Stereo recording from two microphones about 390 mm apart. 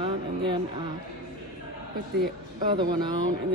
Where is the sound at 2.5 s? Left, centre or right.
Centre.